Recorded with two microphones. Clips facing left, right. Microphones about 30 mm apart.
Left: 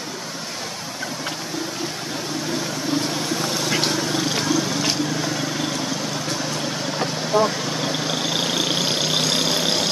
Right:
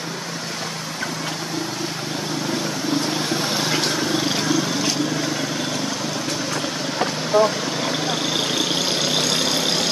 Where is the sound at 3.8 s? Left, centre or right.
Centre.